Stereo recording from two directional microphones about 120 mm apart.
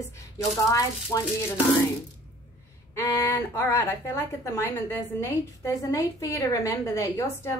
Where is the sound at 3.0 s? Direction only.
20° left (ahead or behind).